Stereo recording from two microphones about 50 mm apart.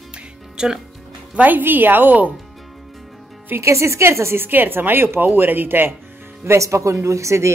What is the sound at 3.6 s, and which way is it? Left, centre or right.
Speech, right.